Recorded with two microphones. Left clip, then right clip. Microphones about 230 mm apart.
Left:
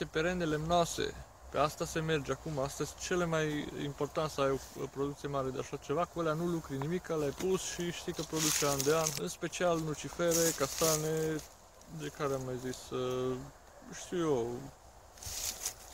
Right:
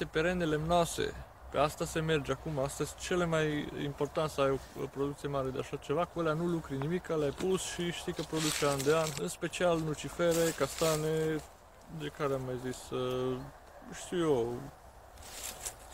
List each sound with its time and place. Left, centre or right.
0.0 s speech: centre